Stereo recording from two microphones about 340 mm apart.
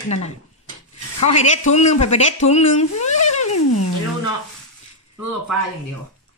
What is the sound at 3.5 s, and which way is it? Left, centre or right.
Music, left.